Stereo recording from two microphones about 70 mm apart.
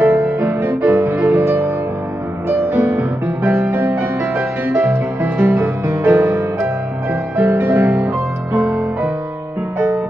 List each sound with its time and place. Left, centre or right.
0.0 s music: right
1.3 s music: right
7.5 s music: right
8.6 s music: right